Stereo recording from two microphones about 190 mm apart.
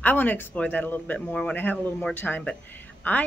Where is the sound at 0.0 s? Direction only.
10° left (ahead or behind).